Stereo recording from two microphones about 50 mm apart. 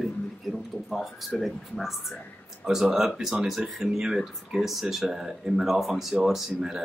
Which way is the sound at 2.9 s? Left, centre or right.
Centre.